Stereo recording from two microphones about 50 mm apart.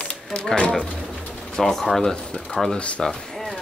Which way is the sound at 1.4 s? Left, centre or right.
Centre.